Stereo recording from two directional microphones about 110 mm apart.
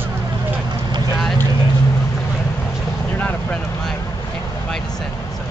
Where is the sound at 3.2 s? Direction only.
15° left (ahead or behind).